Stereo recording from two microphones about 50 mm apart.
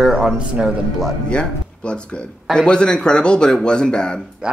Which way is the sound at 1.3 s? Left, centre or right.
Centre.